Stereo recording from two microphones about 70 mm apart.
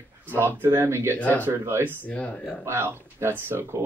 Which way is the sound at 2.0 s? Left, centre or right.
Centre.